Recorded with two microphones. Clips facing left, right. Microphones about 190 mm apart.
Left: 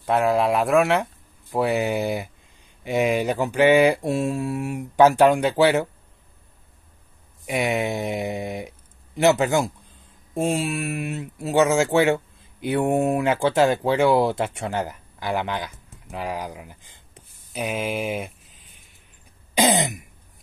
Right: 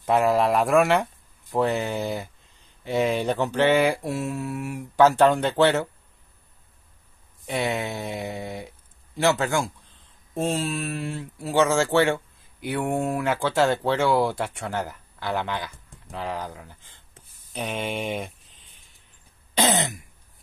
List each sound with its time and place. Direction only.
0.0 s speech: centre (ahead or behind)
1.5 s mantra: 10° left (ahead or behind)
7.4 s speech: 15° left (ahead or behind)
10.3 s mantra: 10° left (ahead or behind)
11.7 s speech: 10° left (ahead or behind)
19.5 s throat clearing: 15° left (ahead or behind)